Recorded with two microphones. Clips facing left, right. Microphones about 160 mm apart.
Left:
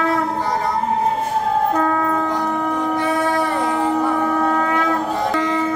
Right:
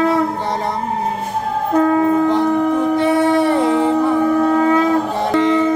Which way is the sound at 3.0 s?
20° right (ahead or behind).